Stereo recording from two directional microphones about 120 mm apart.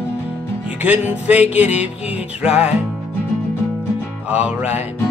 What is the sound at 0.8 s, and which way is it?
Music, 15° right (ahead or behind).